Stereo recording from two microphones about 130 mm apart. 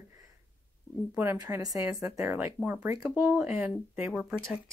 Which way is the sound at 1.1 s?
15° right (ahead or behind).